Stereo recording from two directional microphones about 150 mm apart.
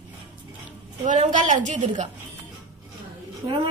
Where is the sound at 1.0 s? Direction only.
55° right (ahead or behind).